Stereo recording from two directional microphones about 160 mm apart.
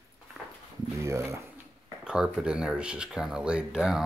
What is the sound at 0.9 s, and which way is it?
Speech, 15° right (ahead or behind).